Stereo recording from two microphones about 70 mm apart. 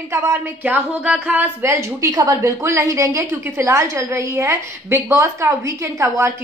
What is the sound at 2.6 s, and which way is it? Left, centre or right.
A woman's voice, right.